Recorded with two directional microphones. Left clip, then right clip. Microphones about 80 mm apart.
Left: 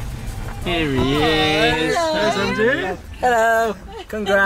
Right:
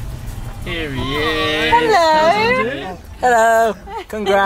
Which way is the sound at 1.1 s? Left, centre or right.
Centre.